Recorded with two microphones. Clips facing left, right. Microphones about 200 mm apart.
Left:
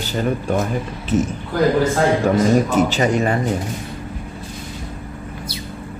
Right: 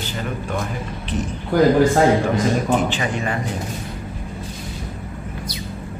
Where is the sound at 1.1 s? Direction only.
40° left (ahead or behind).